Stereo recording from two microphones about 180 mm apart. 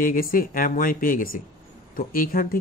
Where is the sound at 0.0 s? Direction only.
50° left (ahead or behind).